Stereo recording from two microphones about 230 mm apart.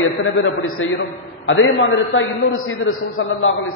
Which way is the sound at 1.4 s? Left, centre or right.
Left.